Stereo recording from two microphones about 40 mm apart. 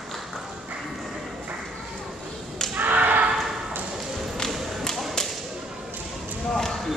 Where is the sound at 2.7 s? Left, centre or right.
Right.